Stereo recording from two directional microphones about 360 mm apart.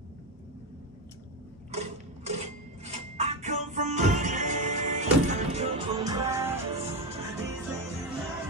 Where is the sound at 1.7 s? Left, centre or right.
Centre.